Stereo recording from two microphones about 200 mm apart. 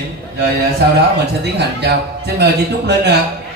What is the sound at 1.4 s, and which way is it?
A man's voice, 55° right (ahead or behind).